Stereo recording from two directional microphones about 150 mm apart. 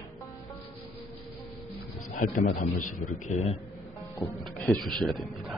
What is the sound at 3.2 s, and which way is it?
Speech, 50° left (ahead or behind).